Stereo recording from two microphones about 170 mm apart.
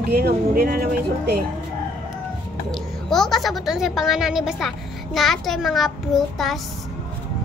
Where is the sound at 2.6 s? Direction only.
Centre (ahead or behind).